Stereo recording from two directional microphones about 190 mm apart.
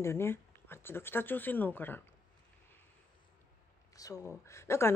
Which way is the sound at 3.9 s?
20° left (ahead or behind).